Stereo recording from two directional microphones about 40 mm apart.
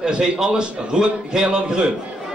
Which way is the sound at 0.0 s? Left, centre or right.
Centre.